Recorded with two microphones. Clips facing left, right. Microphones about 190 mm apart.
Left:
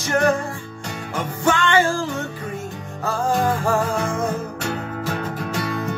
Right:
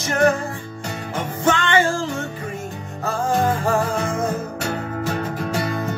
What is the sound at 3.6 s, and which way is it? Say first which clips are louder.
Music: even; 15° right (ahead or behind).